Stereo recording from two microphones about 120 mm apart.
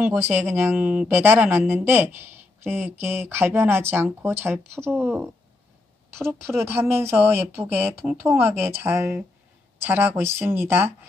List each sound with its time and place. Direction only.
0.0 s a woman's voice: 15° right (ahead or behind)